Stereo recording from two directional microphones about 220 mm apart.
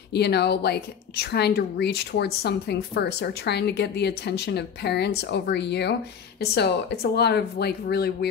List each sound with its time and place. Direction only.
0.1 s a woman's voice: 50° left (ahead or behind)